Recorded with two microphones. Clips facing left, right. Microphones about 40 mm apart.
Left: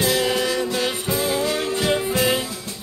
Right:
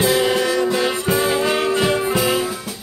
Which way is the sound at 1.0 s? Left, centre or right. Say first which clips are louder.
Right 4 dB; right.